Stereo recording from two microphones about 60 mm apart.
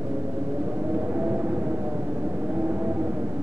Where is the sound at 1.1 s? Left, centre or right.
Right.